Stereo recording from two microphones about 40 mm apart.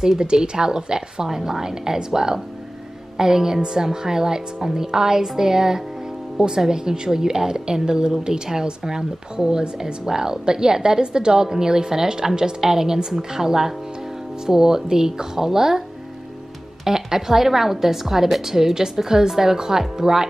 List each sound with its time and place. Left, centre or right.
0.2 s a woman's voice: centre
16.8 s a woman's voice: centre